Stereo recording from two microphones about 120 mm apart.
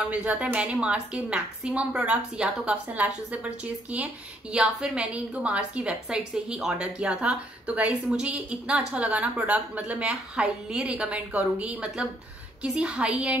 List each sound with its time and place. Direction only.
0.0 s a woman's voice: 10° right (ahead or behind)